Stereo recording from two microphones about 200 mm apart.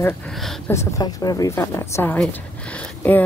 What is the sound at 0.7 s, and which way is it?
A woman's voice, 15° left (ahead or behind).